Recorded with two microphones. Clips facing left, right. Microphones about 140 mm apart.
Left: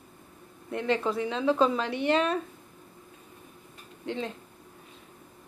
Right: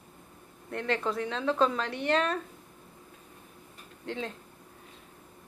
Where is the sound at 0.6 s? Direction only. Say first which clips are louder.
Left 3 dB; 5° left (ahead or behind).